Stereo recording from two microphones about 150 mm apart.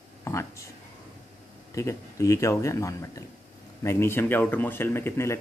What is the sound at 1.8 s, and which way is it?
Speech, 20° left (ahead or behind).